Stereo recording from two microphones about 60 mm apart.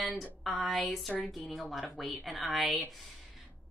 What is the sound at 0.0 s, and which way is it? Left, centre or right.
Speech, centre.